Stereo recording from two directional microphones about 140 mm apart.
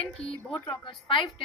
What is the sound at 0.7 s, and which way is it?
Speech, 35° left (ahead or behind).